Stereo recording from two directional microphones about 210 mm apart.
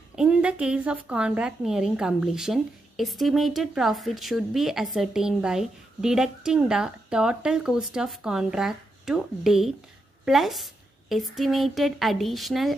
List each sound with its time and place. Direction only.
0.1 s a woman's voice: 5° right (ahead or behind)